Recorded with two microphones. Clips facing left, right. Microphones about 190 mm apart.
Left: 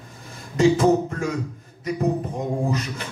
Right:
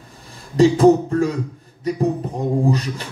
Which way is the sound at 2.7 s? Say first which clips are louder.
Right 5 dB; 35° right (ahead or behind).